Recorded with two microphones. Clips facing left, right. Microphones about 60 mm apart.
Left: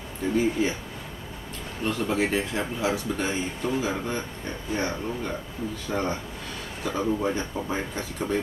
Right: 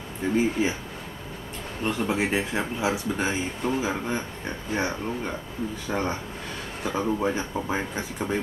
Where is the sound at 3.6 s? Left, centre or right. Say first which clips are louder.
Right 1 dB; right.